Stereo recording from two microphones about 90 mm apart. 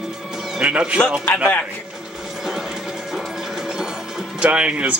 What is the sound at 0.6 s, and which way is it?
Speech, 15° right (ahead or behind).